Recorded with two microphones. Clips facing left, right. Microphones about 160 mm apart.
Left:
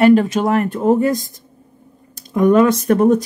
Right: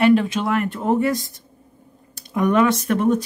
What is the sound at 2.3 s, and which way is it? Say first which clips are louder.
Speech: left 5 dB; 35° left (ahead or behind).